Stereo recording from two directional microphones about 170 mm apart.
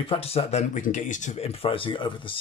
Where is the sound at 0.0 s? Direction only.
35° left (ahead or behind).